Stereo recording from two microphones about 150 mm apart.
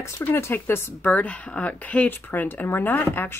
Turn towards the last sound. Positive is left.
turn(degrees=15)  # may be behind; listen again after turning